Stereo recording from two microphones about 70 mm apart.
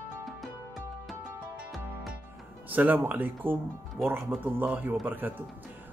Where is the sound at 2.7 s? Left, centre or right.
Right.